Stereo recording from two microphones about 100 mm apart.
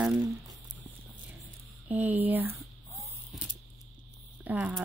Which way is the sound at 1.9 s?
15° right (ahead or behind).